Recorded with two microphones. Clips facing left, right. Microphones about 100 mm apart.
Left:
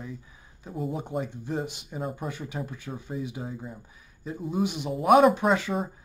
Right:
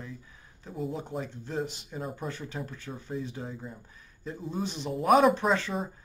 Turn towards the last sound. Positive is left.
turn(degrees=10)  # may be behind; listen again after turning